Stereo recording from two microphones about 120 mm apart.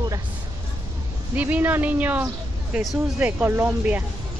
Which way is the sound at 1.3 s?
15° right (ahead or behind).